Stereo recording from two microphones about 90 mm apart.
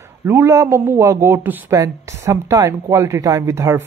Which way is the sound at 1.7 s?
35° right (ahead or behind).